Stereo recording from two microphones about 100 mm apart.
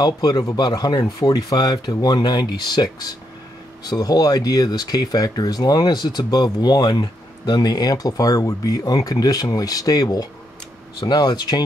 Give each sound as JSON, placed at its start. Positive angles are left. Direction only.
{"t": 0.0, "sound": "speech", "side_deg": 40}